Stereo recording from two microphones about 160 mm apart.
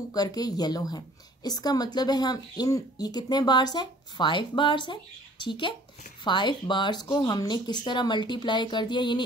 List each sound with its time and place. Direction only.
0.1 s a woman's voice: 25° left (ahead or behind)